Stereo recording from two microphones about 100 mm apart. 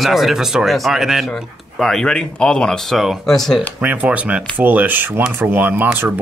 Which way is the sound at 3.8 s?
15° right (ahead or behind).